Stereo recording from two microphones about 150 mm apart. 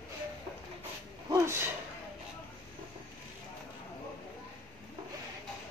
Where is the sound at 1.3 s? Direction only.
15° right (ahead or behind).